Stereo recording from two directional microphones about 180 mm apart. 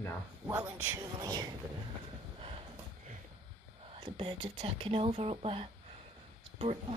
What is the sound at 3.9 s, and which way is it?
Speech, 30° right (ahead or behind).